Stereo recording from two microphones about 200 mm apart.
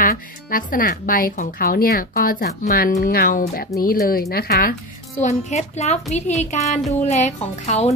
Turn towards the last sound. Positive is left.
turn(degrees=30)  # may be behind; listen again after turning